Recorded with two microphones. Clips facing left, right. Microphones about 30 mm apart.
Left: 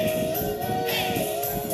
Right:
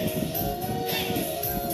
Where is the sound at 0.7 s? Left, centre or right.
Centre.